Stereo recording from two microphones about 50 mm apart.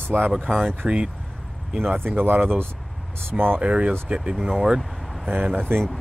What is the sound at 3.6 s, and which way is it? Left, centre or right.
Speech, right.